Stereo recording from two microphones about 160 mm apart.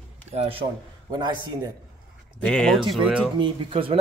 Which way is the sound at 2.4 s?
5° left (ahead or behind).